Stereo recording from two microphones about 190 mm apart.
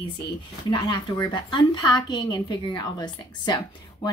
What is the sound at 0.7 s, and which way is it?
A woman's voice, 20° left (ahead or behind).